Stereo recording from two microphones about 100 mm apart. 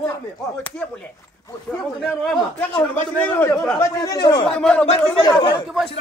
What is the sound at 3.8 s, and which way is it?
Speech, 40° left (ahead or behind).